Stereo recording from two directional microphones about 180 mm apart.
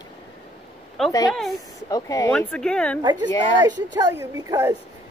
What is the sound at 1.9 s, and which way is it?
Speech, 20° left (ahead or behind).